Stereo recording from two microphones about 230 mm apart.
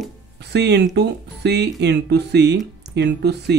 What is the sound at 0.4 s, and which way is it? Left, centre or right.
Speech, right.